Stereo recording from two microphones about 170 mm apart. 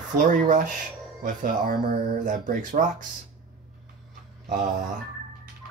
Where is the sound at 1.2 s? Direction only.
50° right (ahead or behind).